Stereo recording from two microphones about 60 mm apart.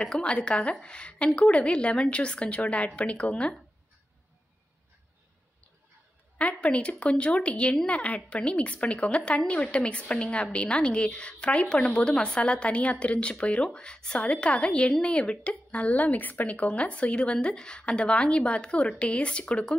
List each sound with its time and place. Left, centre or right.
0.2 s a woman's voice: centre
6.3 s speech: left